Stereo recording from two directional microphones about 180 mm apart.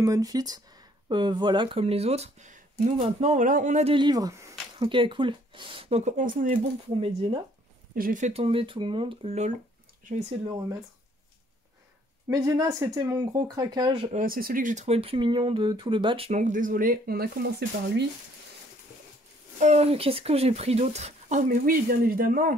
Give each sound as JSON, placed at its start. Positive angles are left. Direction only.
{"t": 0.0, "sound": "speech", "side_deg": -20}
{"t": 3.9, "sound": "speech", "side_deg": -25}
{"t": 7.9, "sound": "speech", "side_deg": -50}
{"t": 12.3, "sound": "speech", "side_deg": -20}
{"t": 14.2, "sound": "speech", "side_deg": -50}
{"t": 16.3, "sound": "speech", "side_deg": -40}
{"t": 19.6, "sound": "speech", "side_deg": -35}